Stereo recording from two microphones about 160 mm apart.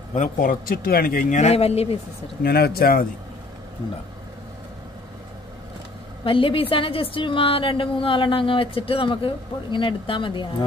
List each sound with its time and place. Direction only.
0.1 s speech: 55° left (ahead or behind); by 2.0 s 40° left (ahead or behind)
2.4 s speech: 75° left (ahead or behind)
6.2 s a woman's voice: 35° left (ahead or behind)